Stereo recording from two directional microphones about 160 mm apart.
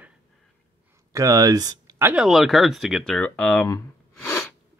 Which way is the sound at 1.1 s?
20° right (ahead or behind).